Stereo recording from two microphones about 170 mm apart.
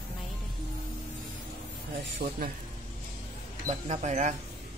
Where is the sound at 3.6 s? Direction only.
45° right (ahead or behind).